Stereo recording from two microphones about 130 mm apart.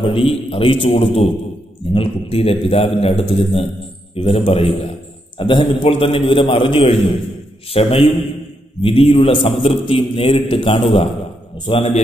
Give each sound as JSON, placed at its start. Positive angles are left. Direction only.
{"t": 0.0, "sound": "a man's voice", "side_deg": 45}